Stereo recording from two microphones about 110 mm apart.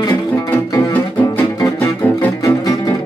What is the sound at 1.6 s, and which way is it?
Music, 25° left (ahead or behind).